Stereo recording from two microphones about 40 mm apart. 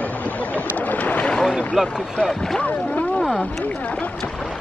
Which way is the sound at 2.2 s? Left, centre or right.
Centre.